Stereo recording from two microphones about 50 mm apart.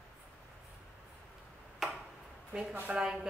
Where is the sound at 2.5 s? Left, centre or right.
Right.